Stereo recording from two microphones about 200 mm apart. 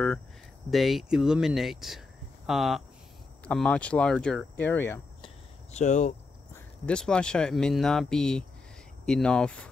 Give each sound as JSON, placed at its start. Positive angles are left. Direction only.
{"t": 0.7, "sound": "speech", "side_deg": 0}
{"t": 5.2, "sound": "cricket", "side_deg": 35}
{"t": 6.9, "sound": "speech", "side_deg": 5}